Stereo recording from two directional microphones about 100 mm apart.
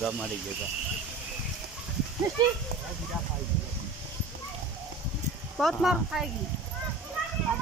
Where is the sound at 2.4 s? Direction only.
45° right (ahead or behind).